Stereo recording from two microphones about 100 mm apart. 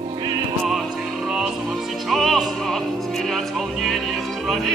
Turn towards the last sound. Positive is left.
turn(degrees=0)  # may be behind; listen again after turning